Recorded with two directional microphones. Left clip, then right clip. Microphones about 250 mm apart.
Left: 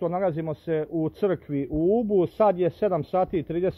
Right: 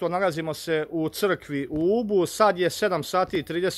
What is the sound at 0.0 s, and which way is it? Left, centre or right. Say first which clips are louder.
Speech: right 1 dB; centre.